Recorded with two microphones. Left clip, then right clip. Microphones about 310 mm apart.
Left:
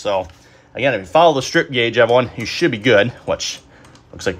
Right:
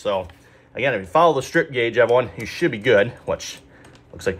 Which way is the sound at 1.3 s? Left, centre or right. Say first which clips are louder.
Left 3 dB; left.